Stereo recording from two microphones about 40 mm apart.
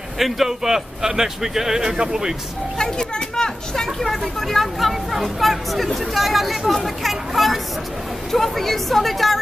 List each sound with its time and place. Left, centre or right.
0.2 s a man's voice: centre
2.8 s a sound: centre
4.0 s speech: centre